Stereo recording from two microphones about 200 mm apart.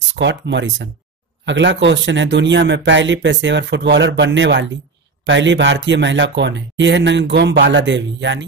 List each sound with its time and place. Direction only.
0.1 s speech: 60° right (ahead or behind)